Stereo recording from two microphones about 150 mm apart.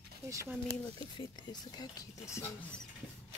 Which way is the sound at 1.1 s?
30° left (ahead or behind).